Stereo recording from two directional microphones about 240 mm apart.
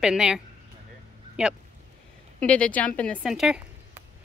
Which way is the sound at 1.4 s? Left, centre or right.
Centre.